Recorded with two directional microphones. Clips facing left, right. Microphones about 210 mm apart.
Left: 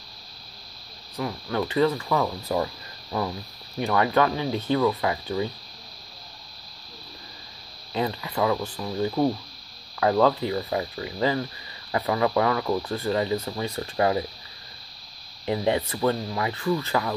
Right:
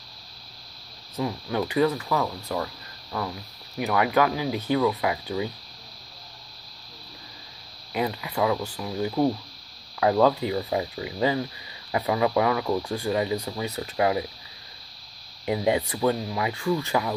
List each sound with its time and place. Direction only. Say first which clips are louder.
1.1 s speech: right 1 dB; 20° right (ahead or behind)
1.6 s speech: left 1 dB; 10° right (ahead or behind); by 3.3 s 15° left (ahead or behind)
3.7 s speech: left 1 dB; 10° right (ahead or behind)
7.9 s speech: even; 10° right (ahead or behind)
15.4 s speech: even; 15° right (ahead or behind)